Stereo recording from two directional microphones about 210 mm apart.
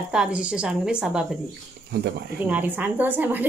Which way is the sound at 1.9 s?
50° right (ahead or behind).